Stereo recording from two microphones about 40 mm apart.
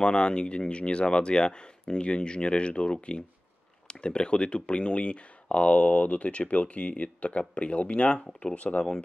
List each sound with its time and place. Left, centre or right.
0.0 s speech: left